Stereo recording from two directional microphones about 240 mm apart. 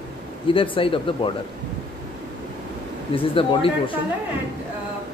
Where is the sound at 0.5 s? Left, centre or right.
Left.